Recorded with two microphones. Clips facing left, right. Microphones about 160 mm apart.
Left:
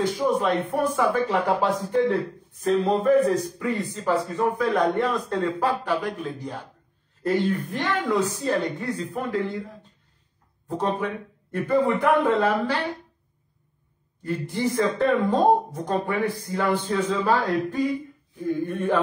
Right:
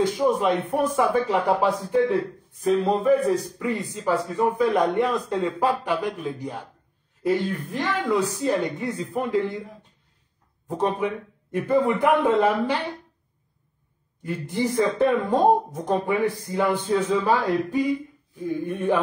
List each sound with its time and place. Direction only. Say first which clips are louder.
0.2 s speech: right 1 dB; 15° right (ahead or behind)
7.7 s speech: right 1 dB; 5° right (ahead or behind)
8.3 s speech: right 1 dB; 15° right (ahead or behind)
10.7 s speech: right 2 dB; 15° right (ahead or behind)
14.2 s speech: even; 15° right (ahead or behind)